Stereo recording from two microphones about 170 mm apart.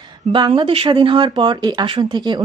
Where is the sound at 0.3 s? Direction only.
30° right (ahead or behind).